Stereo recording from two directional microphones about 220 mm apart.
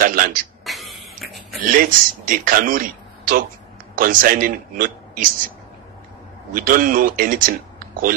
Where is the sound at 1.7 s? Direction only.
40° right (ahead or behind).